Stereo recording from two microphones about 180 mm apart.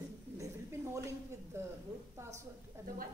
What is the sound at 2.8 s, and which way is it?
Speech, 15° right (ahead or behind).